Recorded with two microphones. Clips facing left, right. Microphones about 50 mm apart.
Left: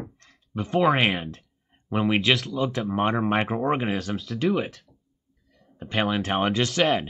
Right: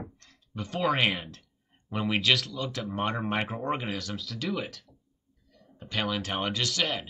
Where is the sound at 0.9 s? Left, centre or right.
Left.